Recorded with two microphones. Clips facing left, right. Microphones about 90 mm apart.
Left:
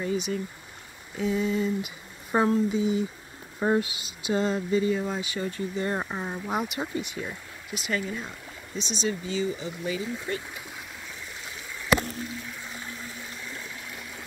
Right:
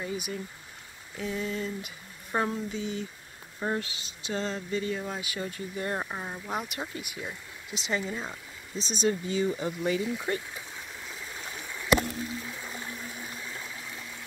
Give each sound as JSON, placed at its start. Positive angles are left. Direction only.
{"t": 0.0, "sound": "speech", "side_deg": -5}
{"t": 3.5, "sound": "speech", "side_deg": 25}
{"t": 3.8, "sound": "speech", "side_deg": 10}
{"t": 5.9, "sound": "speech", "side_deg": 10}
{"t": 7.0, "sound": "speech", "side_deg": -10}
{"t": 7.7, "sound": "speech", "side_deg": -25}
{"t": 8.7, "sound": "speech", "side_deg": -40}